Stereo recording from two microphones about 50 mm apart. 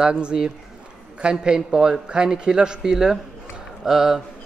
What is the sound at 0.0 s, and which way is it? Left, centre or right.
A man's voice, centre.